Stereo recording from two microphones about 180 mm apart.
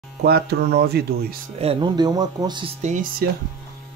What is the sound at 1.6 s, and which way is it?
Speech, 30° right (ahead or behind).